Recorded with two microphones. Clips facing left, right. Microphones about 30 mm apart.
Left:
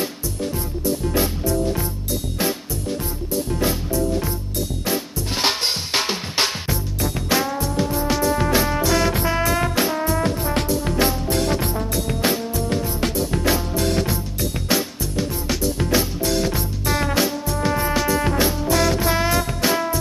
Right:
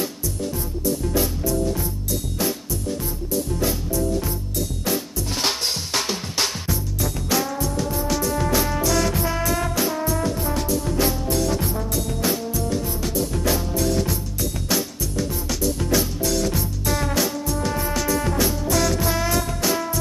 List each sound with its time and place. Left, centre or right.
0.8 s music: left
5.4 s music: left
14.7 s music: left